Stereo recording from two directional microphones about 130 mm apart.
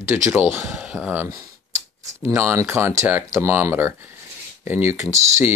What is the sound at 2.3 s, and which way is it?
Speech, 20° right (ahead or behind).